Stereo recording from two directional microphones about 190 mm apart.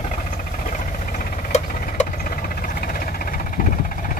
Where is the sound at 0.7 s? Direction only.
40° left (ahead or behind).